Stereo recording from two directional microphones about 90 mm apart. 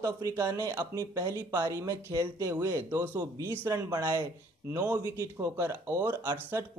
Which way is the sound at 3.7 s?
45° right (ahead or behind).